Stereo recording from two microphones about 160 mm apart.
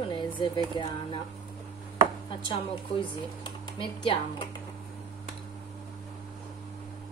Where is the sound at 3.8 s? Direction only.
35° left (ahead or behind).